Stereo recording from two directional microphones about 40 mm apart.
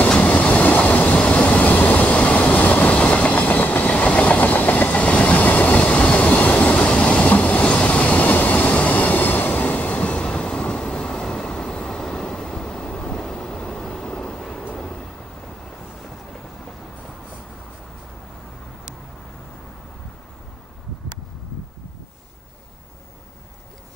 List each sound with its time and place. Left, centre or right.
0.2 s train: left
2.0 s train: left
3.0 s train: left
7.6 s train: left
14.8 s vehicle: centre